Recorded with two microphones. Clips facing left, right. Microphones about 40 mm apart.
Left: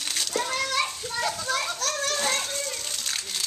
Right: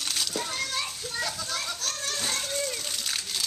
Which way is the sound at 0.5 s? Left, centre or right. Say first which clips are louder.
Left 5 dB; left.